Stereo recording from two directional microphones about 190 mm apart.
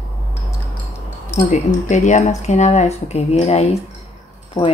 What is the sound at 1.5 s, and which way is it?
Speech, 40° left (ahead or behind).